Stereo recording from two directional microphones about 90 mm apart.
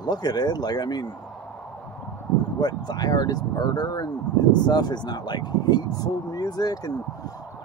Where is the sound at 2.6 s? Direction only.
50° left (ahead or behind).